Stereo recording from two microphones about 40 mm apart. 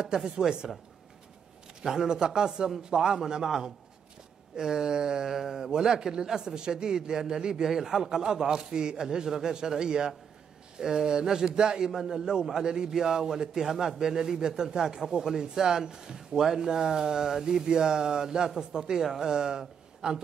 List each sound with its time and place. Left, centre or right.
0.0 s a man's voice: centre
1.8 s a man's voice: centre